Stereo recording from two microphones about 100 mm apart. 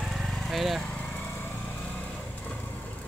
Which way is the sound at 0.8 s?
15° left (ahead or behind).